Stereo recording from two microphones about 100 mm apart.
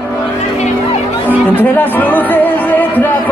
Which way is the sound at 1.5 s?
20° left (ahead or behind).